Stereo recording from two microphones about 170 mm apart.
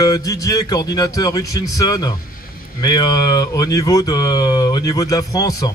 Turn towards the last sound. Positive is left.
turn(degrees=20)  # may be behind; listen again after turning